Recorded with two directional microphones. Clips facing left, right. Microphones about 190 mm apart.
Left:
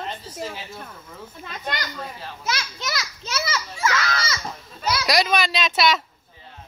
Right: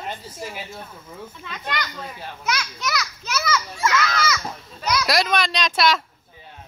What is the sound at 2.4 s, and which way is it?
A child's voice, 25° left (ahead or behind).